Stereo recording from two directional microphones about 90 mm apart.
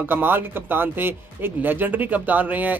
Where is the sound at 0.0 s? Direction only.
20° right (ahead or behind).